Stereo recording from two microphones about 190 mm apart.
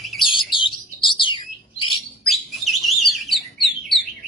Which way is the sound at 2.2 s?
Centre (ahead or behind).